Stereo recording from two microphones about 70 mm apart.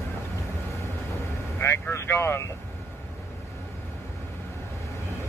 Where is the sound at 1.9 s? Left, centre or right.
Left.